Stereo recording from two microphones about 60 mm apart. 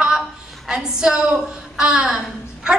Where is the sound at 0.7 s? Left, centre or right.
Centre.